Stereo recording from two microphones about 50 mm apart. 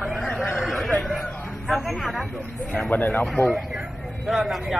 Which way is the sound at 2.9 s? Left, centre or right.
Left.